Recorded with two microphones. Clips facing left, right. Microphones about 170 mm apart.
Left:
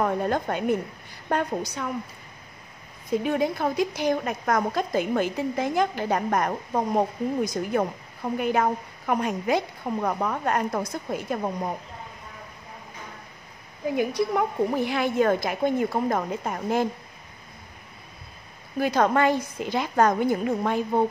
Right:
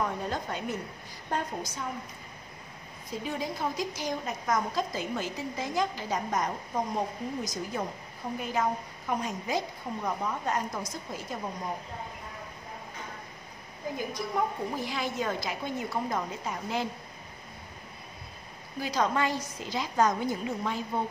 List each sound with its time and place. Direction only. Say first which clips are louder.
0.0 s a woman's voice: left 7 dB; 55° left (ahead or behind)
3.1 s a woman's voice: left 10 dB; 60° left (ahead or behind)
13.9 s a woman's voice: left 8 dB; 70° left (ahead or behind); by 16.8 s 55° left (ahead or behind)
18.8 s a woman's voice: left 7 dB; 55° left (ahead or behind)